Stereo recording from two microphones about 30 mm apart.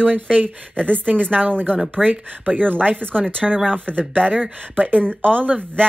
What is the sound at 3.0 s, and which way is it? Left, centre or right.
Speech, left.